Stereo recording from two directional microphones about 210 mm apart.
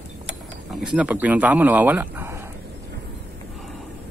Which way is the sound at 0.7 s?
5° right (ahead or behind).